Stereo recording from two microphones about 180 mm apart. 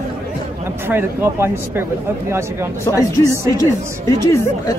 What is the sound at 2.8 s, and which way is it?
Speech, 20° left (ahead or behind).